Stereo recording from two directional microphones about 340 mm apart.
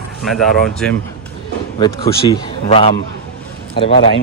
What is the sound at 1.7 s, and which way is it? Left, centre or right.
A man's voice, centre.